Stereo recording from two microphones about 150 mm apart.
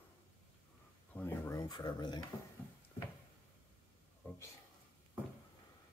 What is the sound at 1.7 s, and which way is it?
Speech, 30° left (ahead or behind).